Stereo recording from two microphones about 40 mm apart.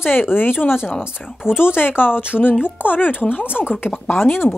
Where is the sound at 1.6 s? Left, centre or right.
Left.